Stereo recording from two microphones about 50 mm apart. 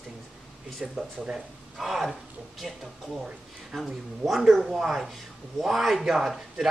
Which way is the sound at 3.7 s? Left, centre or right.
Centre.